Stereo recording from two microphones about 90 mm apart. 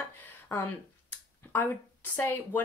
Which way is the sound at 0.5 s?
20° left (ahead or behind).